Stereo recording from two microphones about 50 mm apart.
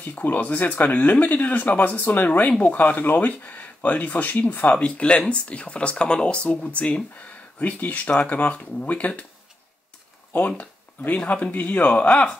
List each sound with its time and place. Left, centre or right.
0.0 s speech: left
10.3 s speech: left